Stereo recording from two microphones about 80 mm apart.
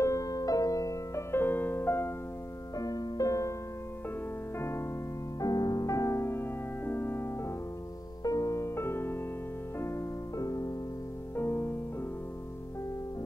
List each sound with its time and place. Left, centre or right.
0.0 s music: left
1.3 s music: left
2.8 s music: left
4.6 s music: left
5.4 s music: left
8.2 s music: left
11.3 s music: left